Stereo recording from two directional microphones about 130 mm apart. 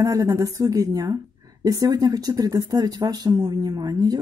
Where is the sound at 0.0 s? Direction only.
25° right (ahead or behind).